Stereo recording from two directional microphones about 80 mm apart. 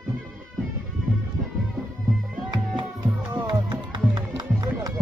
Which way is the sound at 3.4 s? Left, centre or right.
Right.